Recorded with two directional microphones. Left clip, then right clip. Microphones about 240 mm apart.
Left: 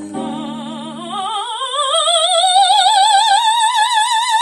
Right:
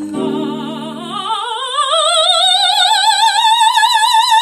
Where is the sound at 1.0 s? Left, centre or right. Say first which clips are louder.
Right 2 dB; right.